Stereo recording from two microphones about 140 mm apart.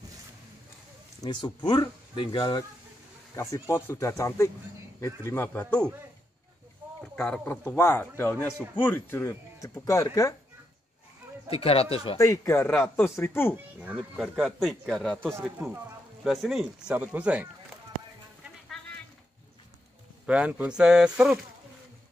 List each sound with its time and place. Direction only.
1.2 s speech: 35° left (ahead or behind)
3.3 s a man's voice: 20° left (ahead or behind)
7.0 s a man's voice: 5° left (ahead or behind); by 10.3 s 25° left (ahead or behind)
11.4 s speech: 40° left (ahead or behind)
12.2 s a man's voice: 20° left (ahead or behind)
13.9 s a man's voice: 5° right (ahead or behind)
16.9 s speech: 10° right (ahead or behind)
20.2 s speech: 10° right (ahead or behind)